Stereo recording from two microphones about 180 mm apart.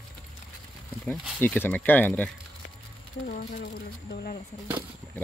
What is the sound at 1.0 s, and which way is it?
Speech, 5° left (ahead or behind).